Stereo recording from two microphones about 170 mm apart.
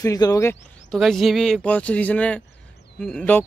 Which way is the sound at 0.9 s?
Centre (ahead or behind).